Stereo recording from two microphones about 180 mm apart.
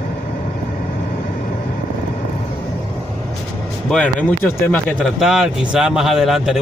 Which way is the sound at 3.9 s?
5° left (ahead or behind).